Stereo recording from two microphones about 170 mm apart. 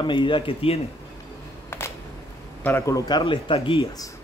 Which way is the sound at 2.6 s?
15° left (ahead or behind).